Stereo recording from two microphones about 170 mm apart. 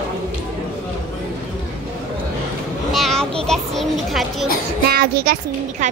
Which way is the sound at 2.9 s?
Centre (ahead or behind).